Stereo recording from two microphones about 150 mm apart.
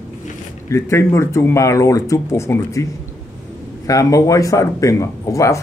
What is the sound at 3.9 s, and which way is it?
Speech, 20° left (ahead or behind).